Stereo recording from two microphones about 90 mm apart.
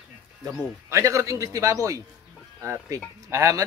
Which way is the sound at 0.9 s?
35° right (ahead or behind).